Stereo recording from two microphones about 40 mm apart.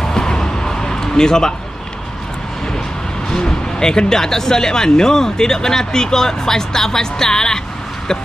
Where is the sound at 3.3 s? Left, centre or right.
Centre.